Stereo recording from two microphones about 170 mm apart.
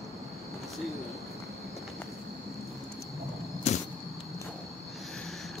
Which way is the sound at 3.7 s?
40° left (ahead or behind).